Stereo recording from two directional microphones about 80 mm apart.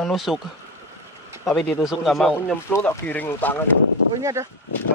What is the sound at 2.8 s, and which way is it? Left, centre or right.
Speech, left.